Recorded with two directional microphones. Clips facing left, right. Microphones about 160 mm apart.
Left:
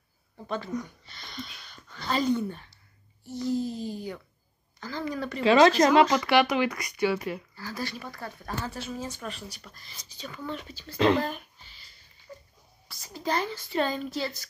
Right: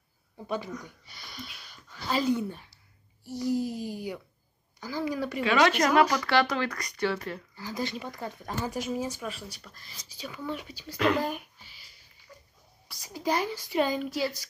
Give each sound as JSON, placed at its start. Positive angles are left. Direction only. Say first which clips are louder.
{"t": 0.5, "sound": "speech", "louder": "left 2 dB", "side_deg": -10}
{"t": 5.4, "sound": "speech", "louder": "left 5 dB", "side_deg": 30}
{"t": 6.1, "sound": "speech", "louder": "left 3 dB", "side_deg": 15}
{"t": 7.5, "sound": "speech", "louder": "right 2 dB", "side_deg": -20}
{"t": 11.1, "sound": "a sound", "louder": "left 1 dB", "side_deg": -10}
{"t": 12.3, "sound": "a sound", "louder": "left 7 dB", "side_deg": 30}
{"t": 12.8, "sound": "speech", "louder": "right 2 dB", "side_deg": -15}